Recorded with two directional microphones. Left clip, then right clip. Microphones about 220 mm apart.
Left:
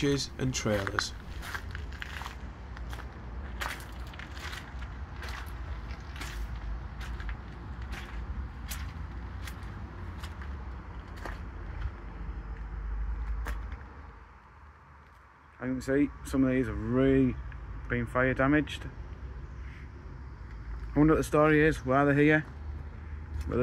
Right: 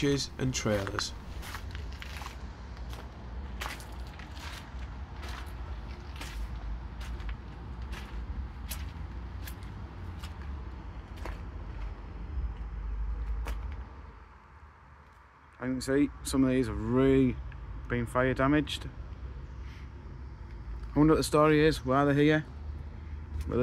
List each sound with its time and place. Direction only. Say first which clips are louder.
0.0 s speech: even; centre (ahead or behind)
15.6 s speech: even; 20° right (ahead or behind)
20.9 s speech: even; 15° right (ahead or behind)
23.5 s speech: even; 5° right (ahead or behind)